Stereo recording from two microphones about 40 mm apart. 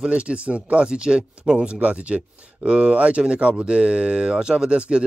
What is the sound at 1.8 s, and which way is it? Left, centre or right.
Speech, right.